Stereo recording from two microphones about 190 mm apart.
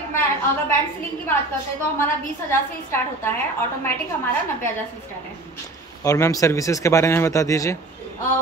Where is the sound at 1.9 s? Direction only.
10° left (ahead or behind).